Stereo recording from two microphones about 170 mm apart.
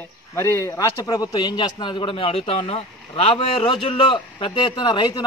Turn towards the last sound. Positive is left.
turn(degrees=25)  # may be behind; listen again after turning